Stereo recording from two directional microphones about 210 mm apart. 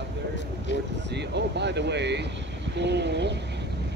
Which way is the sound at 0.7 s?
55° left (ahead or behind).